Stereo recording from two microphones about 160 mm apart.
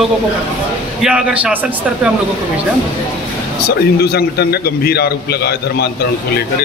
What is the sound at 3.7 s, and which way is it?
A man's voice, 80° left.